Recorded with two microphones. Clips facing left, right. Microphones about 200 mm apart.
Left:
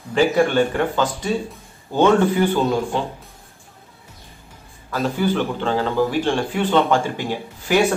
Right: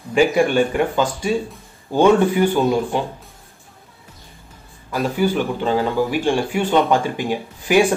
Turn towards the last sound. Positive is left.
turn(degrees=-15)  # may be behind; listen again after turning